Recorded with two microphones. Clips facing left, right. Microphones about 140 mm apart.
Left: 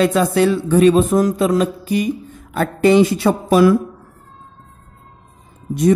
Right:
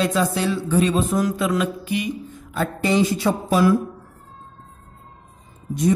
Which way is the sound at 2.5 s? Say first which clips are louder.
Left 8 dB; 60° left (ahead or behind).